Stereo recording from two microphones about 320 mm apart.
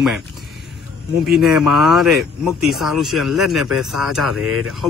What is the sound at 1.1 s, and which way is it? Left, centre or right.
Speech, centre.